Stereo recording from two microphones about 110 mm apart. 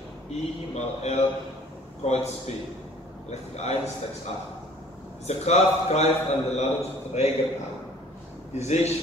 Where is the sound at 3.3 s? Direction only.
85° left.